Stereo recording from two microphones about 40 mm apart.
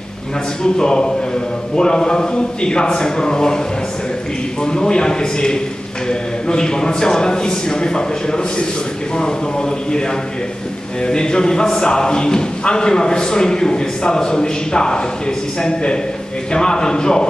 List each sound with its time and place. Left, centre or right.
0.7 s speech: centre
4.6 s speech: centre